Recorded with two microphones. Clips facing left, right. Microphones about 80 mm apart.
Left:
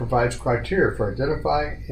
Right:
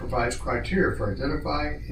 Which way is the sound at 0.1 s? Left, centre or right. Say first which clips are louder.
Left 5 dB; left.